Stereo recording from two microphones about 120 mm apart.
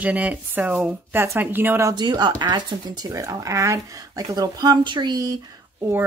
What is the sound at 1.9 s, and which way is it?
Speech, 35° right (ahead or behind).